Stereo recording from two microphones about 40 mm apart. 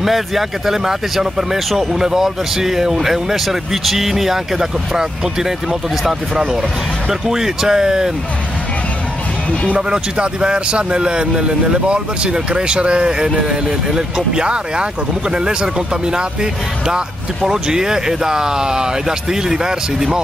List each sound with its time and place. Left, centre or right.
0.0 s speech: centre
9.8 s a man's voice: right